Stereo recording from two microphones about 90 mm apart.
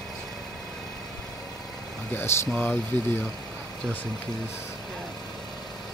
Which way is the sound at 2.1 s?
30° left (ahead or behind).